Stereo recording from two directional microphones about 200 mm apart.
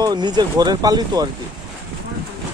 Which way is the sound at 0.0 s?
20° right (ahead or behind).